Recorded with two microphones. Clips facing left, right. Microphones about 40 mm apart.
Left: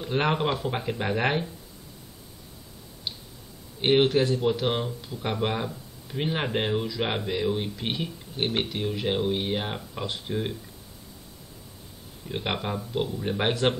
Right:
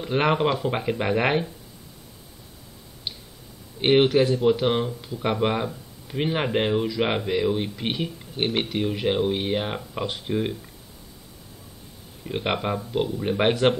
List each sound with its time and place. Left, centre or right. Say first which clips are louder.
0.0 s speech: right 4 dB; centre
3.8 s speech: right 3 dB; centre
10.2 s speech: right 5 dB; centre
12.3 s speech: right 4 dB; centre